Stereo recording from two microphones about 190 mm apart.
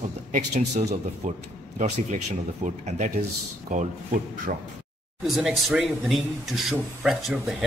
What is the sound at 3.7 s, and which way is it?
Speech, 40° right (ahead or behind).